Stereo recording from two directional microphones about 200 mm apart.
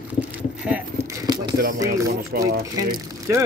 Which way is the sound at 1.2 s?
20° right (ahead or behind).